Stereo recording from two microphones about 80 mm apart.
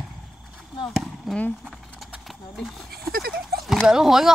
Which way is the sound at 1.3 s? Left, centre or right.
Centre.